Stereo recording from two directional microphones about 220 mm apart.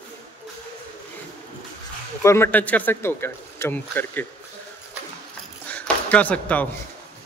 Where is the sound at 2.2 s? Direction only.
10° left (ahead or behind).